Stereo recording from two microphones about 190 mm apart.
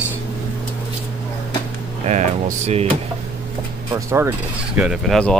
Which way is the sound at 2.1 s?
40° right (ahead or behind).